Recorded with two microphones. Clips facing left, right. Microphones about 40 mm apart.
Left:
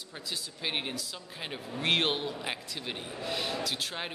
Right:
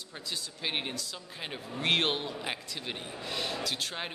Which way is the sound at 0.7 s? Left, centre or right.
Centre.